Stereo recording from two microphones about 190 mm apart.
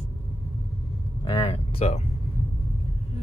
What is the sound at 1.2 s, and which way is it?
Speech, 30° left (ahead or behind).